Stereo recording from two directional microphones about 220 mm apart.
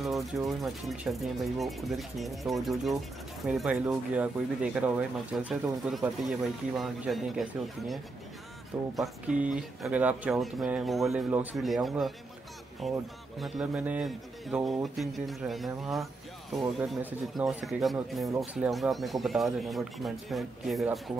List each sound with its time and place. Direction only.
0.0 s speech: centre (ahead or behind)